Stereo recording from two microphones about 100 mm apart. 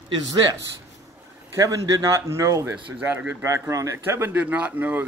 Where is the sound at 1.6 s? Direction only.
35° right (ahead or behind).